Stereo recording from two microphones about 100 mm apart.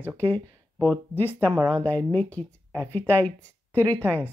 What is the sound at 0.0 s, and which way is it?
Speech, 20° left (ahead or behind).